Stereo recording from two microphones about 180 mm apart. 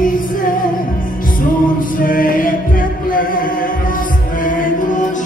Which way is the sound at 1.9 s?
50° left (ahead or behind).